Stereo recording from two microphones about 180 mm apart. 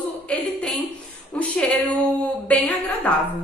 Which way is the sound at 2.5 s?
10° left (ahead or behind).